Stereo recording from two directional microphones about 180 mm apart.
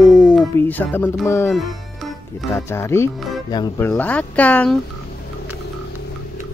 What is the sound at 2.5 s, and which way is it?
Speech, 15° left (ahead or behind).